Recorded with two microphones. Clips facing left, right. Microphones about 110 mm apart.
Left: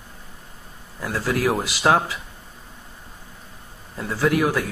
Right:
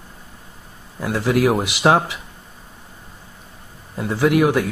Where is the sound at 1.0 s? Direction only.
20° right (ahead or behind).